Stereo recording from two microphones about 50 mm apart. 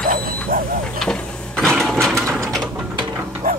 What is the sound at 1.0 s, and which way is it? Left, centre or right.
Printer, centre.